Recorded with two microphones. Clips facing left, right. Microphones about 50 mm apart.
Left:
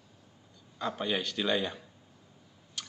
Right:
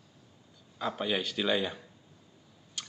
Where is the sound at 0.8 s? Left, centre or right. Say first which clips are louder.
Right 1 dB; centre.